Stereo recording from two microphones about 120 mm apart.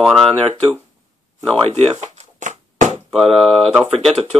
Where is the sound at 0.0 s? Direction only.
Centre (ahead or behind).